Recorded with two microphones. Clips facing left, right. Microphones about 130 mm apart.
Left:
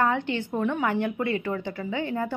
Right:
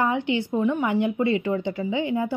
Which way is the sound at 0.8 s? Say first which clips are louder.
Right 3 dB; 15° right (ahead or behind).